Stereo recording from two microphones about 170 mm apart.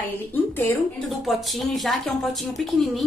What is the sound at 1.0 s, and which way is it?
A woman's voice, centre (ahead or behind).